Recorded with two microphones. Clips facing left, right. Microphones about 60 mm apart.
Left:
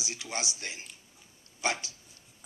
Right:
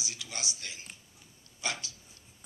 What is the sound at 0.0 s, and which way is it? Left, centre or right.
Speech, left.